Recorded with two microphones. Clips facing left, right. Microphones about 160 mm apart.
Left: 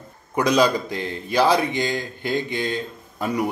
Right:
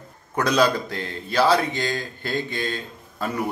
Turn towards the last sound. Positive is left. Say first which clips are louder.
# left 3 dB
turn(degrees=15)  # may be behind; listen again after turning